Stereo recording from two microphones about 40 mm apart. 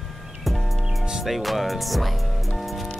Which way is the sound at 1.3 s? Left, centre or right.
Centre.